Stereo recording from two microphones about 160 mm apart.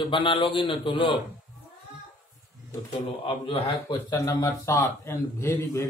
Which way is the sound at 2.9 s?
35° left (ahead or behind).